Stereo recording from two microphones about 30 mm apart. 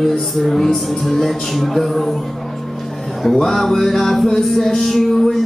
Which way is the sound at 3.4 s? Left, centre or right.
Centre.